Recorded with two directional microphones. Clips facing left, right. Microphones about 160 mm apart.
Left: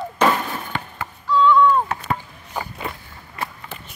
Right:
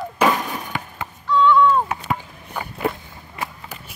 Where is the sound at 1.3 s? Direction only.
Centre (ahead or behind).